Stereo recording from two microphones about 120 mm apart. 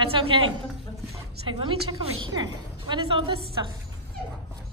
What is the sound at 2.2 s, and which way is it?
A woman's voice, 35° right (ahead or behind).